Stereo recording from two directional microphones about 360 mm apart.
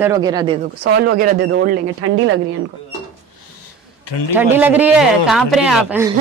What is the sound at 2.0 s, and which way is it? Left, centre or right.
Speech, right.